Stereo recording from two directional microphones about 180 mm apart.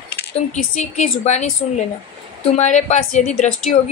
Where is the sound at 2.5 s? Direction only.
40° left (ahead or behind).